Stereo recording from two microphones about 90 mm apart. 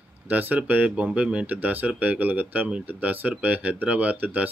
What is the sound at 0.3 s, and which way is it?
Speech, 20° right (ahead or behind).